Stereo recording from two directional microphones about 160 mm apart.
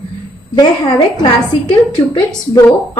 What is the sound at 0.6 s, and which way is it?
A woman's voice, 25° left (ahead or behind).